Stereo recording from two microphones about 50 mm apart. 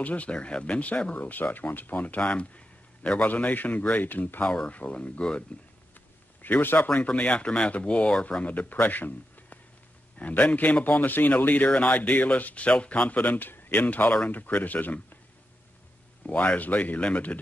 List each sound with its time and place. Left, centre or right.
0.0 s speech: left
2.2 s speech: left
6.4 s a man's voice: left
7.0 s speech: left
16.3 s speech: left